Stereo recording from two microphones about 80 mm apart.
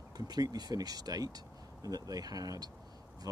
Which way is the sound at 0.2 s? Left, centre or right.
Right.